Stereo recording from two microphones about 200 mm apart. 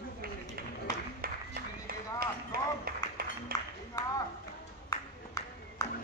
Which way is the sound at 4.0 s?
20° left (ahead or behind).